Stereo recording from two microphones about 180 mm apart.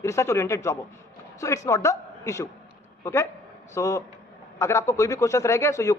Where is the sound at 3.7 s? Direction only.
15° left (ahead or behind).